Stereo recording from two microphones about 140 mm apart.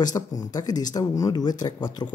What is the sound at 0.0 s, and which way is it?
Speech, 25° left (ahead or behind).